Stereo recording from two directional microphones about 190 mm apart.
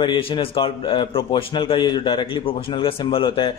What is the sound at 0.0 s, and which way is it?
A man's voice, 25° left (ahead or behind).